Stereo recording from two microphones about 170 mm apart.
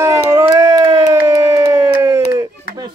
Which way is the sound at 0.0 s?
20° right (ahead or behind).